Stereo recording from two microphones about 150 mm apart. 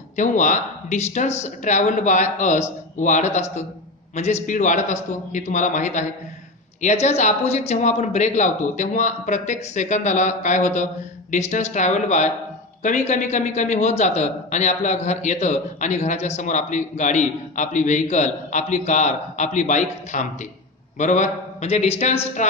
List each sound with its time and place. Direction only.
0.1 s a man's voice: 55° left (ahead or behind)